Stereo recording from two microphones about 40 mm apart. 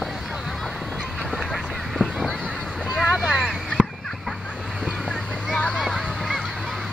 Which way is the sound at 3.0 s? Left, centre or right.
Right.